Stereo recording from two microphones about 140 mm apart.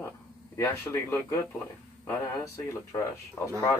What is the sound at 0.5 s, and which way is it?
Speech, 20° left (ahead or behind).